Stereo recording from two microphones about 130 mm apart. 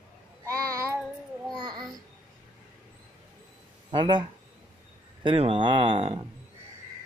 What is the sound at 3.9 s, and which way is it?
Speech, 35° right (ahead or behind).